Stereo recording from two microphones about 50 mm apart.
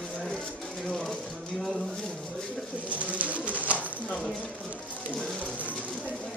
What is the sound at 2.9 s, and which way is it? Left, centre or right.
Bird, right.